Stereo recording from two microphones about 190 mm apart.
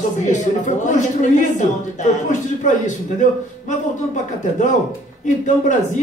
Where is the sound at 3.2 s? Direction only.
40° left (ahead or behind).